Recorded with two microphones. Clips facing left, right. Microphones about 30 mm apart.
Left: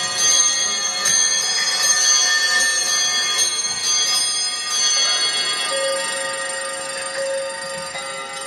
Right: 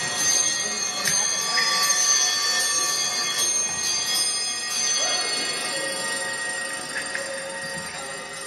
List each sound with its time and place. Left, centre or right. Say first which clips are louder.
0.0 s bell: left 5 dB; left